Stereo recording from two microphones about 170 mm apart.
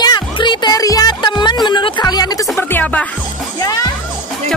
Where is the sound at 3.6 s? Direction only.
20° left (ahead or behind).